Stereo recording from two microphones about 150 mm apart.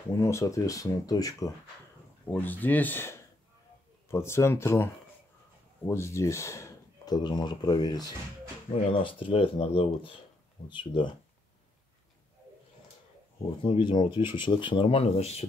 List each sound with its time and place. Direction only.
0.2 s speech: 20° left (ahead or behind)
2.2 s speech: 10° left (ahead or behind); by 11.1 s 30° left (ahead or behind)
13.6 s speech: 30° left (ahead or behind)